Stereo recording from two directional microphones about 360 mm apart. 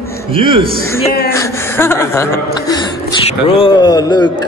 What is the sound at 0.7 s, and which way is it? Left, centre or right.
Speech, centre.